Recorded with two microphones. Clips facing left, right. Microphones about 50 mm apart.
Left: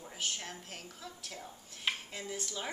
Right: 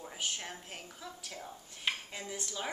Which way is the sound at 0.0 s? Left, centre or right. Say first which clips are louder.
Right 1 dB; centre.